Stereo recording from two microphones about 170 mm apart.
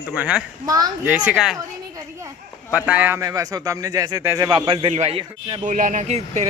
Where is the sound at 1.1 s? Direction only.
5° right (ahead or behind).